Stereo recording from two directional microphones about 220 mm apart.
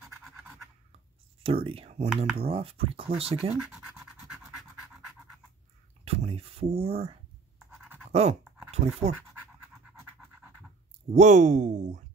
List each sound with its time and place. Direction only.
1.4 s speech: 25° right (ahead or behind)
6.0 s speech: 25° right (ahead or behind)
8.1 s a sound: 30° right (ahead or behind)
8.7 s speech: 30° right (ahead or behind)
11.1 s speech: 30° right (ahead or behind)